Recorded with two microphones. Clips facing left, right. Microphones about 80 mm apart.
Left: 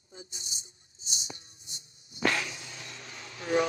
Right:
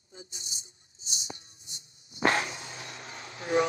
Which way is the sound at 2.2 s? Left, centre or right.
Right.